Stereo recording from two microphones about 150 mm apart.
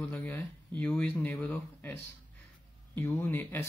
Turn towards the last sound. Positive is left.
turn(degrees=15)  # may be behind; listen again after turning